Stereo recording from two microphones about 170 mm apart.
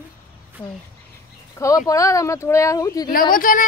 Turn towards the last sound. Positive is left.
turn(degrees=55)  # may be behind; listen again after turning